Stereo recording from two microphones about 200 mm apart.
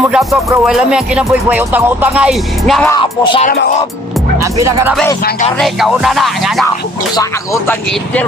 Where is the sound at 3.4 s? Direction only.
50° left (ahead or behind).